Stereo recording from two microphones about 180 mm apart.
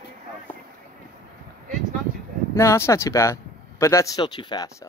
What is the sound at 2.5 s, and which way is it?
Speech, 15° left (ahead or behind).